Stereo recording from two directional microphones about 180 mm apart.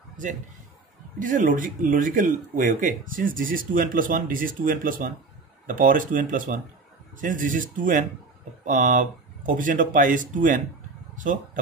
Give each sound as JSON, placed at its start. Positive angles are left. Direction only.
{"t": 1.2, "sound": "speech", "side_deg": -45}